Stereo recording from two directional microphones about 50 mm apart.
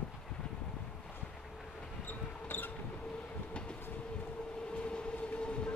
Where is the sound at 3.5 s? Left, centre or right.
Centre.